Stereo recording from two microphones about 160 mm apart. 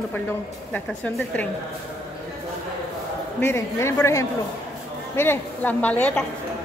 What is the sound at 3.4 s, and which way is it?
A woman's voice, 15° left (ahead or behind).